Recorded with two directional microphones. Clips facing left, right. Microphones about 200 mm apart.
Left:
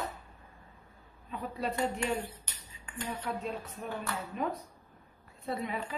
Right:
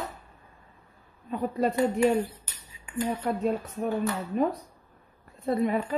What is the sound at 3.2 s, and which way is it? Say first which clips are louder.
A woman's voice: right 9 dB; 45° right (ahead or behind).